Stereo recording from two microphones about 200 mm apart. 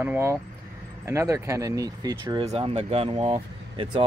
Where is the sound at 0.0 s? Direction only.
10° right (ahead or behind).